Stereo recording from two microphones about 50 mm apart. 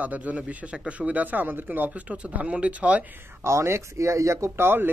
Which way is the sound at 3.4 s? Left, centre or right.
Right.